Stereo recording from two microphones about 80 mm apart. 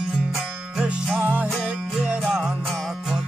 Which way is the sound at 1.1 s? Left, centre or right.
Centre.